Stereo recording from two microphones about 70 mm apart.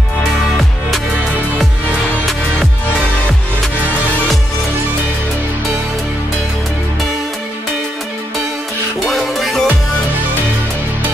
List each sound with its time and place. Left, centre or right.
9.0 s music: centre